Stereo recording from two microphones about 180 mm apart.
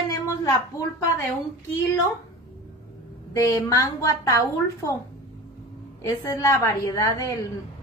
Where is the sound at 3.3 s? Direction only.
15° left (ahead or behind).